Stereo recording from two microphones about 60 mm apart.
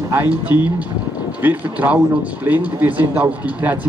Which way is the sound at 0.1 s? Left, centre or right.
Right.